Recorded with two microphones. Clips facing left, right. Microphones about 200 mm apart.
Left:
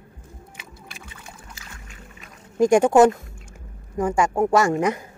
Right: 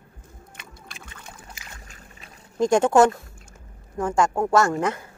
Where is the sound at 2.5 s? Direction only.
10° left (ahead or behind).